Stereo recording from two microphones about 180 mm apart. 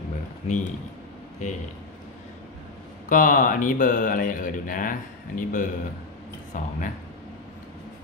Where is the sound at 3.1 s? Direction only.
50° left (ahead or behind).